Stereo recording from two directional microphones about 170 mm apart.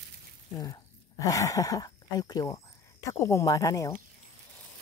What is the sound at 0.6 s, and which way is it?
Speech, 20° left (ahead or behind).